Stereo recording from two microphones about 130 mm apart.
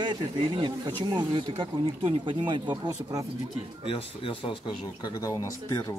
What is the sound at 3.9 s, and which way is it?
Speech, 45° left (ahead or behind).